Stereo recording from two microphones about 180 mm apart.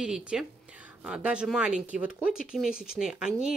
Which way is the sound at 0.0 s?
5° right (ahead or behind).